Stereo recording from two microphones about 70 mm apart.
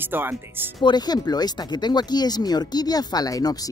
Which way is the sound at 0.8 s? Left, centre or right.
Left.